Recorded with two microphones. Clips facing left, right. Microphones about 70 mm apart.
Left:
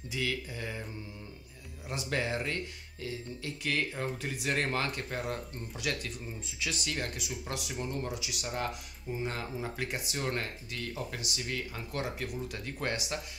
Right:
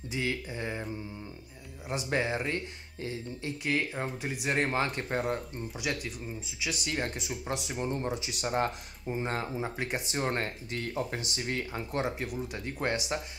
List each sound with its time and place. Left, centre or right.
0.1 s speech: right
1.9 s speech: centre
5.1 s speech: right
5.8 s speech: centre
7.0 s speech: right